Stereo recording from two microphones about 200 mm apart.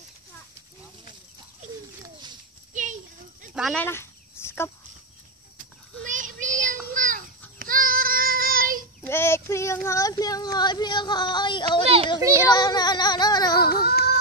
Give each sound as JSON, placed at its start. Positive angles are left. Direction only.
{"t": 2.7, "sound": "a sound", "side_deg": -40}
{"t": 3.5, "sound": "speech", "side_deg": 0}
{"t": 3.8, "sound": "a sound", "side_deg": 10}
{"t": 6.0, "sound": "child singing", "side_deg": -40}
{"t": 9.0, "sound": "speech", "side_deg": 10}
{"t": 12.2, "sound": "a child's voice", "side_deg": -15}
{"t": 12.4, "sound": "speech", "side_deg": 20}
{"t": 13.8, "sound": "baby cry", "side_deg": 50}